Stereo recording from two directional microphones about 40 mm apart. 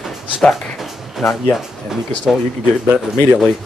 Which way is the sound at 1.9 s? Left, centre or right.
Centre.